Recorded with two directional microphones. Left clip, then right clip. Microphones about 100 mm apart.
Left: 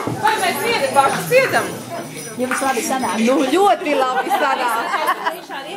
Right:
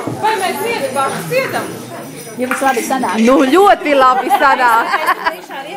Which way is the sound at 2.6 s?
15° right (ahead or behind).